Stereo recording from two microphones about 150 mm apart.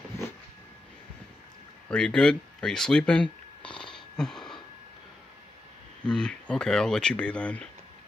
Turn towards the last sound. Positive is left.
turn(degrees=10)  # may be behind; listen again after turning